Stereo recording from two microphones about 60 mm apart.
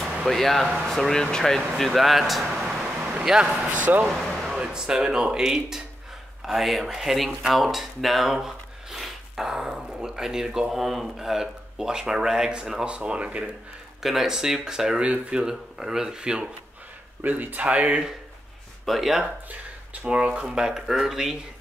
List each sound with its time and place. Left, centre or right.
0.3 s speech: centre
3.0 s a sound: centre
3.3 s speech: centre
3.8 s speech: right
4.1 s a sound: centre
4.6 s speech: centre
14.0 s speech: centre
17.2 s speech: right
18.9 s speech: centre
20.1 s speech: centre
20.4 s speech: centre